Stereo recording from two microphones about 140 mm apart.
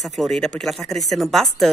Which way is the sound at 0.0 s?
Centre (ahead or behind).